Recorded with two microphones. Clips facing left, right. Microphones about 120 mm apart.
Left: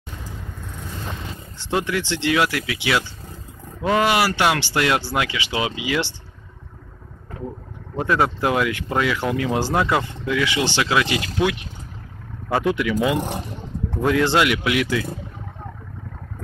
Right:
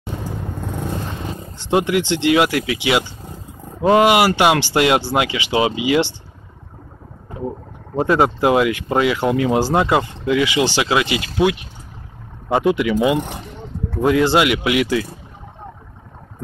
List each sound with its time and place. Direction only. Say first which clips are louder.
0.2 s vehicle: right 9 dB; 60° right (ahead or behind)
1.2 s roaring cats: right 6 dB; 40° right (ahead or behind)
1.6 s speech: right 6 dB; 20° right (ahead or behind)
7.9 s speech: right 5 dB; 30° right (ahead or behind)
8.2 s speech: right 6 dB; 15° right (ahead or behind)